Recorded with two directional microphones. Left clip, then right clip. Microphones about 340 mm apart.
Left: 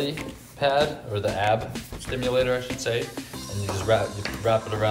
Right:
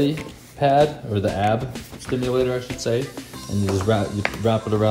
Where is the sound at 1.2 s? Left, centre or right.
Centre.